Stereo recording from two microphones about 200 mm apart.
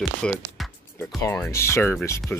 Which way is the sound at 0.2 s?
5° left (ahead or behind).